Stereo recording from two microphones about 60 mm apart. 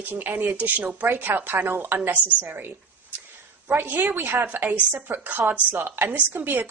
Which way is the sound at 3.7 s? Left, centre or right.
Right.